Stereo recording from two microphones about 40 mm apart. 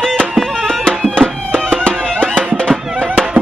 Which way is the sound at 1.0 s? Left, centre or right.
Left.